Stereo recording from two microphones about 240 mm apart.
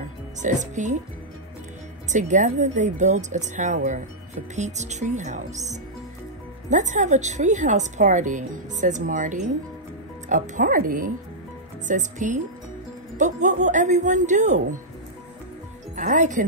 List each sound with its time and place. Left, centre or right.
0.4 s speech: right
2.0 s speech: right
16.0 s speech: right